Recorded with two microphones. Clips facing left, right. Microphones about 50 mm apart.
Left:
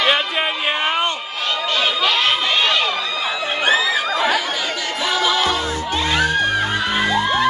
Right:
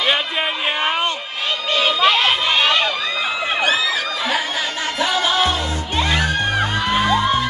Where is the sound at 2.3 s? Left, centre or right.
Centre.